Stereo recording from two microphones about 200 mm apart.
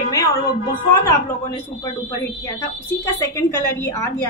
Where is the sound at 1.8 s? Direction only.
15° left (ahead or behind).